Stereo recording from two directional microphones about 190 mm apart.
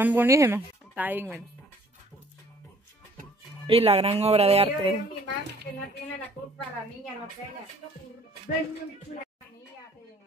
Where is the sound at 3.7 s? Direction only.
30° right (ahead or behind).